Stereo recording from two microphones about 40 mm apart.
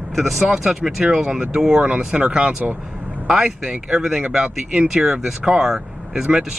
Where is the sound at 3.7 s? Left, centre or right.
Centre.